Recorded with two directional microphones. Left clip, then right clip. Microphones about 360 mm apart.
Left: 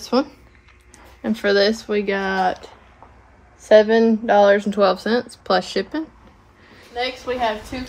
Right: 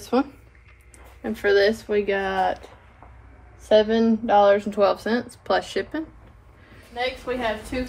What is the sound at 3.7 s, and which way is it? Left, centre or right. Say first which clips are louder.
Speech: left 5 dB; left.